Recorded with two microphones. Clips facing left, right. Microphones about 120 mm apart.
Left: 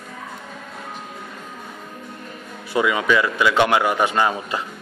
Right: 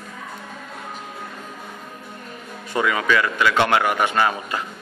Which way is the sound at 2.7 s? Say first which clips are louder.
Left 2 dB; 15° left (ahead or behind).